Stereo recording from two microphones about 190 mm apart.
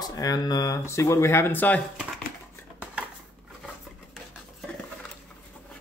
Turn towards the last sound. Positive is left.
turn(degrees=0)  # may be behind; listen again after turning